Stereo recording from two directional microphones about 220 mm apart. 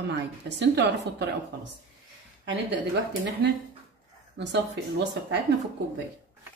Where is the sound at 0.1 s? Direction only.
50° right (ahead or behind).